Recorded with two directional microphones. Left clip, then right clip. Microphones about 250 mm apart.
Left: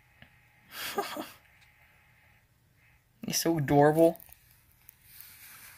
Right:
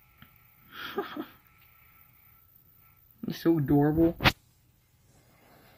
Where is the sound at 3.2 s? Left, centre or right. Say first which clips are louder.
Right 2 dB; centre.